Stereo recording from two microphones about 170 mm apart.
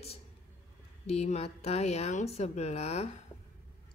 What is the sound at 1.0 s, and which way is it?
Speech, 40° left (ahead or behind).